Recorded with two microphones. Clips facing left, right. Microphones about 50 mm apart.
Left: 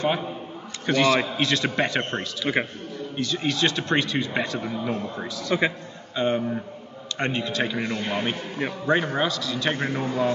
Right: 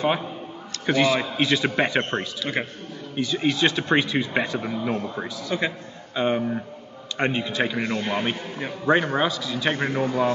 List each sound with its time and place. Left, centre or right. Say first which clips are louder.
0.0 s speech: right 1 dB; centre
2.4 s a man's voice: left 3 dB; centre
3.2 s speech: right 3 dB; centre
5.5 s a man's voice: left 3 dB; centre
6.1 s speech: right 1 dB; centre